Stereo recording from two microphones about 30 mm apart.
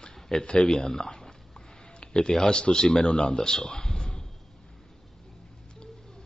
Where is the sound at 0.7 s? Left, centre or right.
Centre.